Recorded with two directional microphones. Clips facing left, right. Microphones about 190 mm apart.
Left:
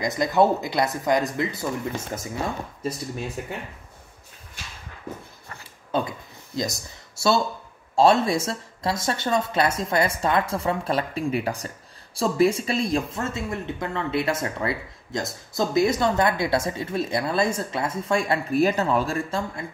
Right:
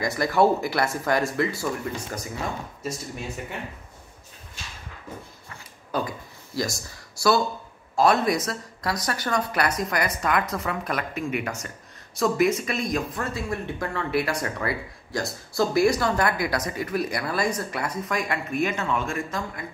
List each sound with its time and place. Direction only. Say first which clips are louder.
0.0 s speech: left 1 dB; 20° left (ahead or behind)
5.9 s speech: left 2 dB; 25° left (ahead or behind)